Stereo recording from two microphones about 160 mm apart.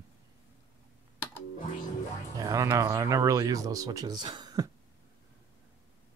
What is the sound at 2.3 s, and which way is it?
Speech, 20° right (ahead or behind).